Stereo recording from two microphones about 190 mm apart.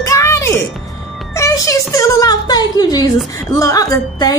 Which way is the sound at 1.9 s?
15° left (ahead or behind).